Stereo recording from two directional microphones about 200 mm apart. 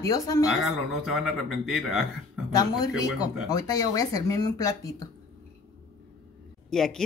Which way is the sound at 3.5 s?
15° left (ahead or behind).